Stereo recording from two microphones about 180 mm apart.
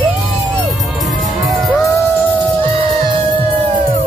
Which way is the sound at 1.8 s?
15° left (ahead or behind).